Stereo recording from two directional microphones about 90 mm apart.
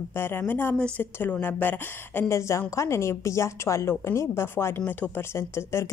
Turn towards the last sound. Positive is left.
turn(degrees=30)  # may be behind; listen again after turning